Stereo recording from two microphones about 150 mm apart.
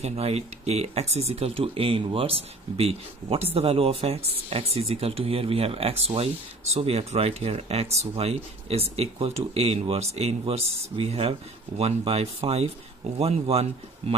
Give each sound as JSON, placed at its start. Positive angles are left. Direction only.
{"t": 0.0, "sound": "speech", "side_deg": -45}